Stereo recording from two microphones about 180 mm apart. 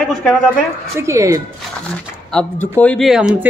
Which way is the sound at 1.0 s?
15° right (ahead or behind).